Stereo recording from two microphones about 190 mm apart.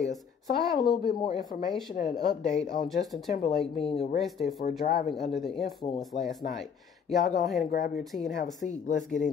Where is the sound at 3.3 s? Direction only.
40° left (ahead or behind).